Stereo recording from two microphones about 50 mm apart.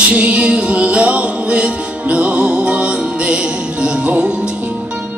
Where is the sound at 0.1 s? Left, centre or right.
Right.